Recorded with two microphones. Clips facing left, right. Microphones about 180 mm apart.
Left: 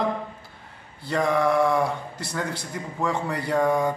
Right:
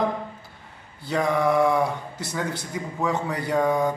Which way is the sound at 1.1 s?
Centre (ahead or behind).